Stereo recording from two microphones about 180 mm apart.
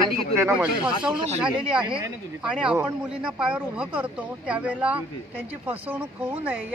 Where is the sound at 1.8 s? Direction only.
25° right (ahead or behind).